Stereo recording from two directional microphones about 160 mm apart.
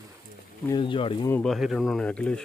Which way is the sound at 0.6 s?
30° left (ahead or behind).